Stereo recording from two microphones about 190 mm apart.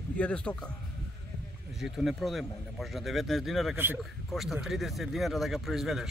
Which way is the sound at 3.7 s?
10° right (ahead or behind).